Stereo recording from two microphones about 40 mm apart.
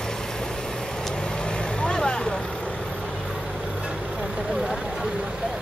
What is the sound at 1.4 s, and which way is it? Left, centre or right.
Vehicle, left.